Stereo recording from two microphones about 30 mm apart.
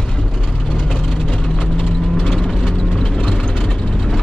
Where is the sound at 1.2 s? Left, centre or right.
Left.